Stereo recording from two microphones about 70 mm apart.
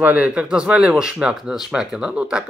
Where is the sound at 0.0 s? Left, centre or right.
Right.